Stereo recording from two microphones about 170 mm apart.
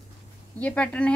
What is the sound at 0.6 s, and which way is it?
Speech, 10° left (ahead or behind).